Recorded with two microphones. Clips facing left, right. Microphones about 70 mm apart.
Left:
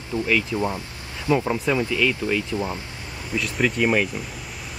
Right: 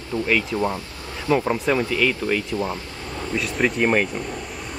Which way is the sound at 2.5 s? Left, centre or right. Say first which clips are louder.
Right 1 dB; centre.